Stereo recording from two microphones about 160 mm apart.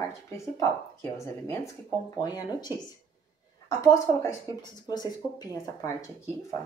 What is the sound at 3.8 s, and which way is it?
Speech, 20° left (ahead or behind).